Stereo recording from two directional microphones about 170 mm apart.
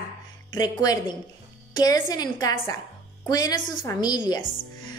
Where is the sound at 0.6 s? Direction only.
25° left (ahead or behind).